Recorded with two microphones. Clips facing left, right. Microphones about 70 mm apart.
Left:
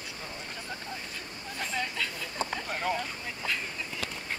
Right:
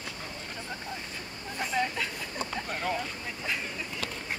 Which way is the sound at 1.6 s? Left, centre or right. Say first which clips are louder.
Right 3 dB; centre.